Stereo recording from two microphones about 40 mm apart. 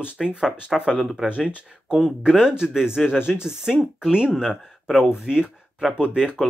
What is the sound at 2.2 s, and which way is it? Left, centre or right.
Speech, centre.